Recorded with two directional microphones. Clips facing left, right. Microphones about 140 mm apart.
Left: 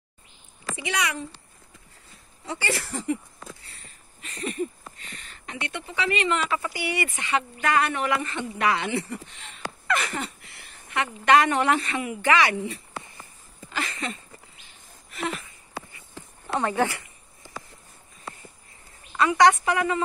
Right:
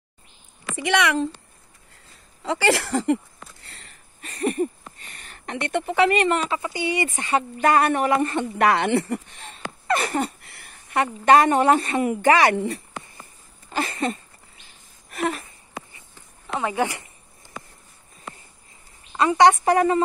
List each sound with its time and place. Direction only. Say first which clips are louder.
0.8 s speech: right 9 dB; 90° right
2.4 s speech: right 8 dB; 90° right
4.2 s a sound: right 6 dB; 50° right (ahead or behind)
5.2 s speech: right 6 dB; 55° right (ahead or behind)
6.5 s speech: right 3 dB; 25° right (ahead or behind)
7.1 s speech: right 4 dB; 35° right (ahead or behind)
13.7 s a sound: right 6 dB; 40° right (ahead or behind)
16.7 s speech: even; 20° right (ahead or behind)
19.1 s speech: right 2 dB; 25° right (ahead or behind)
19.6 s a sound: right 6 dB; 40° right (ahead or behind)